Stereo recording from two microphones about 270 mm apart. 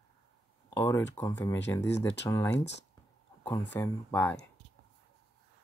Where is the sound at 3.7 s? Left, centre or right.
Centre.